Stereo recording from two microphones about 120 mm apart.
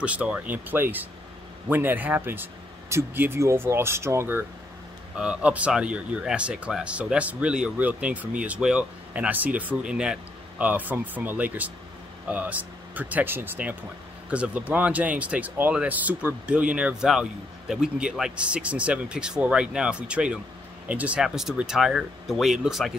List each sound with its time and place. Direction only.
0.0 s speech: 10° right (ahead or behind)
5.1 s speech: 10° right (ahead or behind)